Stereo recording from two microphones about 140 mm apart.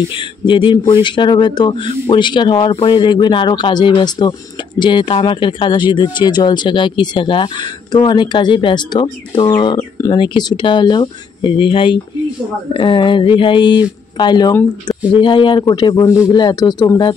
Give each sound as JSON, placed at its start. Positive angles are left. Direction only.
{"t": 0.1, "sound": "a man's voice", "side_deg": 35}